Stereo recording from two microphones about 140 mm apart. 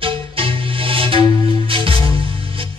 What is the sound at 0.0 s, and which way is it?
Music, 40° right (ahead or behind).